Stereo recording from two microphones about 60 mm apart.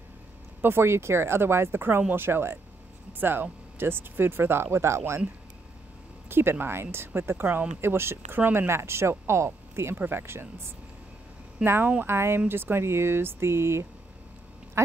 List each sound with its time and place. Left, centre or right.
0.6 s speech: right
6.2 s speech: right
11.6 s speech: right